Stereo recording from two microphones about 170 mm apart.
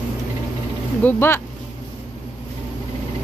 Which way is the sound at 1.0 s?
15° left (ahead or behind).